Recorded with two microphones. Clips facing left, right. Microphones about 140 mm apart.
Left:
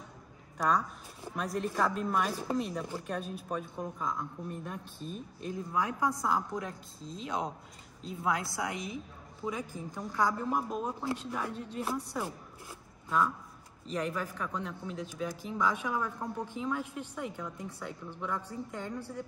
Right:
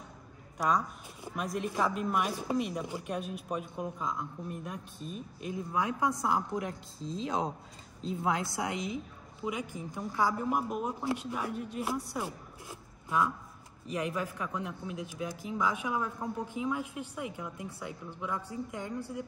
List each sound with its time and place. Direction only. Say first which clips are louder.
1.2 s a woman's voice: even; 10° right (ahead or behind)
13.8 s speech: even; 10° right (ahead or behind)